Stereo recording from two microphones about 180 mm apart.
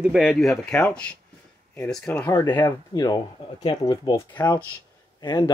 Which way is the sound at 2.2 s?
20° left (ahead or behind).